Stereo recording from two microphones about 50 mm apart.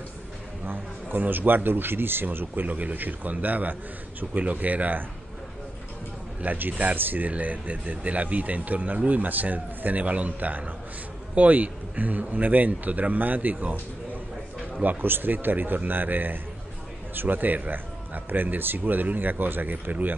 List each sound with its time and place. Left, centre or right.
0.7 s speech: right
6.4 s speech: right
14.8 s speech: right